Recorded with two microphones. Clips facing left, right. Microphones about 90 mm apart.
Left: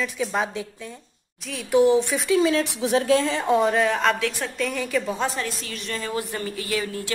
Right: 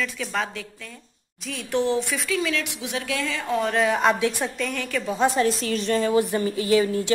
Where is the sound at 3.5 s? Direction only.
5° left (ahead or behind).